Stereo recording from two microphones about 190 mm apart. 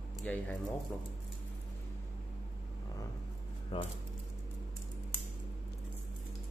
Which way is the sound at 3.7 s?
25° left (ahead or behind).